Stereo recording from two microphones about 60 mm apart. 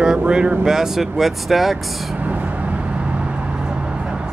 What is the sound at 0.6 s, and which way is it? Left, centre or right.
Speech, centre.